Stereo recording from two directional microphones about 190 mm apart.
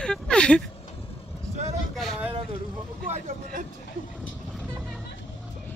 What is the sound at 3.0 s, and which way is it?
Vehicle, 45° right (ahead or behind).